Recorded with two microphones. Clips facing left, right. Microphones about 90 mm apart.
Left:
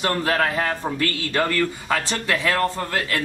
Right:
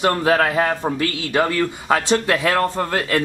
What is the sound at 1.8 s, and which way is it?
Speech, 25° right (ahead or behind).